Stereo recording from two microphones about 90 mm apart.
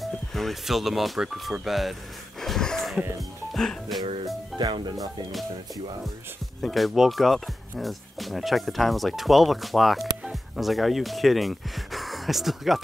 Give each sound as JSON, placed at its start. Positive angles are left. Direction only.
{"t": 0.0, "sound": "speech", "side_deg": 0}
{"t": 2.4, "sound": "wheeze", "side_deg": 5}
{"t": 3.2, "sound": "speech", "side_deg": 0}
{"t": 4.8, "sound": "speech", "side_deg": -45}
{"t": 6.6, "sound": "speech", "side_deg": 0}